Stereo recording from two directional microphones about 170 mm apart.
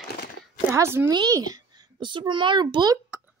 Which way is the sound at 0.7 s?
15° right (ahead or behind).